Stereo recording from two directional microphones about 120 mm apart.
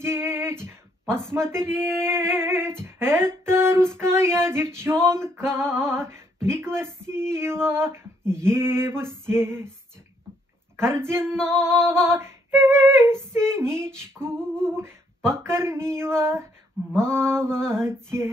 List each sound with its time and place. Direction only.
0.0 s female singing: 20° right (ahead or behind)
11.0 s female singing: 20° right (ahead or behind)
14.5 s humming: 5° left (ahead or behind)
14.8 s female singing: 20° right (ahead or behind)